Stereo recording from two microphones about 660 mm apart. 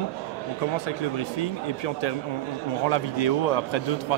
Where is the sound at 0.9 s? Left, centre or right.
Left.